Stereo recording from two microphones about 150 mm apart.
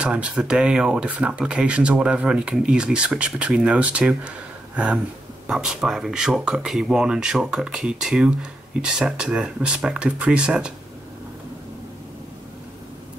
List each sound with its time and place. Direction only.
0.0 s speech: 5° right (ahead or behind)